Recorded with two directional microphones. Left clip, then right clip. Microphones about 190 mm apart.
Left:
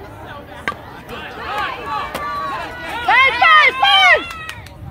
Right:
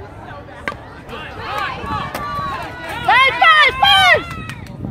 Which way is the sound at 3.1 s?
50° right (ahead or behind).